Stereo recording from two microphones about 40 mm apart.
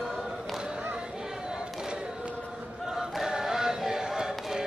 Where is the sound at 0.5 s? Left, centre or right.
Centre.